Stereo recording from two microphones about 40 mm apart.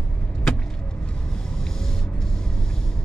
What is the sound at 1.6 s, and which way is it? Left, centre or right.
Vehicle, centre.